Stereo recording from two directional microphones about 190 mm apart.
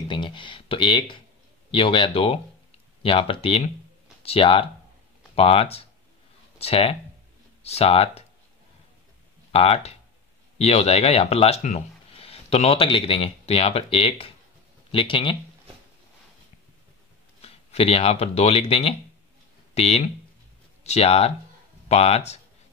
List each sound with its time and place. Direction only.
0.1 s speech: 25° left (ahead or behind)
9.5 s speech: 30° left (ahead or behind)
17.4 s speech: 30° left (ahead or behind)